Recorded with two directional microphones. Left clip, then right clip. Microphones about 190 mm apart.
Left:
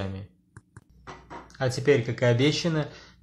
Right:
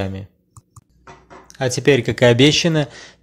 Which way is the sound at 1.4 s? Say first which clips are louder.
Right 7 dB; 35° right (ahead or behind).